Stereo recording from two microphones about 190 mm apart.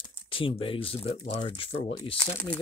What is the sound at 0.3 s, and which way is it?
Speech, 30° left (ahead or behind).